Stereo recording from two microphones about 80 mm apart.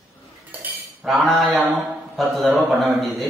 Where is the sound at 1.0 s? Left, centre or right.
Centre.